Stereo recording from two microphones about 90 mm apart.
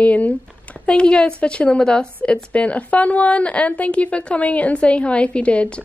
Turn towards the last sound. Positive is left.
turn(degrees=15)  # may be behind; listen again after turning